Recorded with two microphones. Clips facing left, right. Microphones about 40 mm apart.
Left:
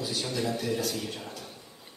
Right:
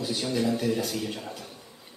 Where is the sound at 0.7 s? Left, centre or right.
Right.